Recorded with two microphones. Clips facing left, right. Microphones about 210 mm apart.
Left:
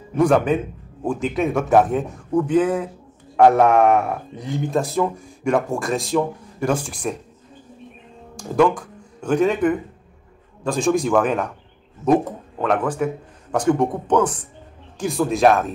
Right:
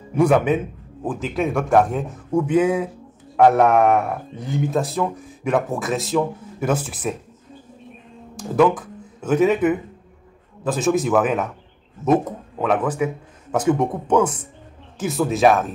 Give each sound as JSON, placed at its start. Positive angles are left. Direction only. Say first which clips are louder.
{"t": 0.1, "sound": "speech", "louder": "even", "side_deg": -5}
{"t": 8.4, "sound": "speech", "louder": "right 1 dB", "side_deg": -5}